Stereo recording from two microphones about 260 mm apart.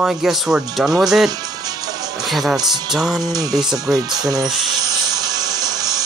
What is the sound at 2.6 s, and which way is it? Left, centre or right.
Speech, centre.